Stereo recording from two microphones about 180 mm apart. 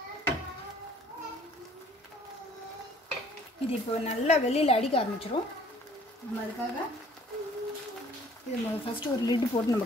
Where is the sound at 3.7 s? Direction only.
40° left (ahead or behind).